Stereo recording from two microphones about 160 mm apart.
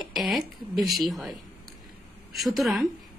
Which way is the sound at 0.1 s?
Centre (ahead or behind).